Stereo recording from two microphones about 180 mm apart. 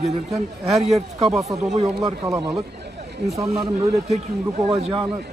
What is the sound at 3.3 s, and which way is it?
Speech, 15° right (ahead or behind).